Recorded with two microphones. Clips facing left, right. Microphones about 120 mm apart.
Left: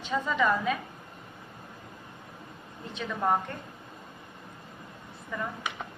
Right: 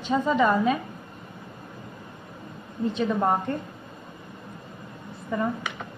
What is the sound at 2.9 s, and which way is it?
Speech, 35° right (ahead or behind).